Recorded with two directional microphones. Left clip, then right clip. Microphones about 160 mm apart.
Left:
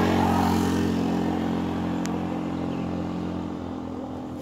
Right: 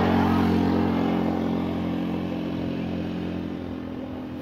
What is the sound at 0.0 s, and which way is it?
Vehicle, 80° left.